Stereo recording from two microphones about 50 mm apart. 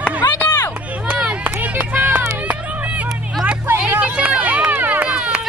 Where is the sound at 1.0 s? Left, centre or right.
Right.